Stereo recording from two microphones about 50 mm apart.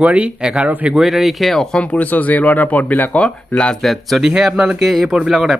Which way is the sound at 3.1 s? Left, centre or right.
Left.